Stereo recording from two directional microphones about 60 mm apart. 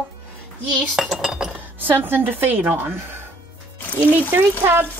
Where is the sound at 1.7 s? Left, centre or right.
Right.